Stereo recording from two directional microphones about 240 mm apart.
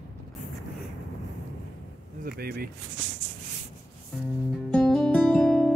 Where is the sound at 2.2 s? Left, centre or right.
Right.